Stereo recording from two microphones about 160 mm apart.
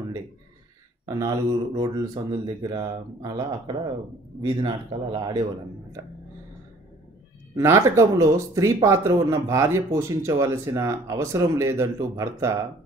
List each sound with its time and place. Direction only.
1.0 s speech: 20° right (ahead or behind)
7.5 s speech: 15° right (ahead or behind)